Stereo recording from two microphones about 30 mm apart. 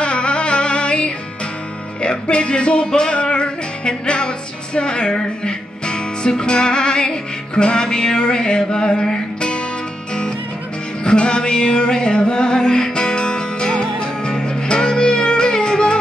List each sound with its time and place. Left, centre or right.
0.0 s music: left
2.8 s music: left
11.1 s music: left